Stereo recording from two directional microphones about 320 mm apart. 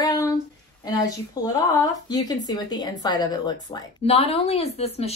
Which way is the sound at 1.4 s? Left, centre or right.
Centre.